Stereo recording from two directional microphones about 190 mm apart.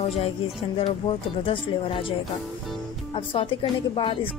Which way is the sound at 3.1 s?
30° left (ahead or behind).